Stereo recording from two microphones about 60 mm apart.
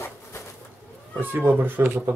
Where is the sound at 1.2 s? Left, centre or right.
Right.